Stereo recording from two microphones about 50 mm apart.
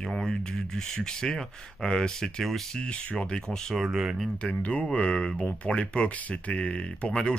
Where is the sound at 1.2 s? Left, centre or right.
Centre.